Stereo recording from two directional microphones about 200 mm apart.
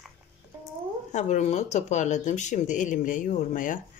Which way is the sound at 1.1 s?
35° left (ahead or behind).